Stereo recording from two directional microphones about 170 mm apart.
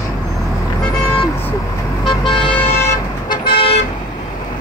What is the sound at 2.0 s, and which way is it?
Vehicle, 30° left (ahead or behind).